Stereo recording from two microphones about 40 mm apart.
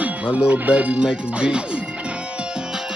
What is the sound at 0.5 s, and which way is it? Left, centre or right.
Speech, right.